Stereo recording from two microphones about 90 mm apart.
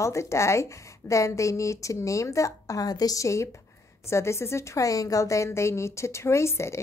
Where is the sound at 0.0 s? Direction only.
35° left (ahead or behind).